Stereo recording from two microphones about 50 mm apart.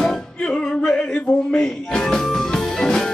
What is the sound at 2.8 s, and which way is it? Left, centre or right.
Music, centre.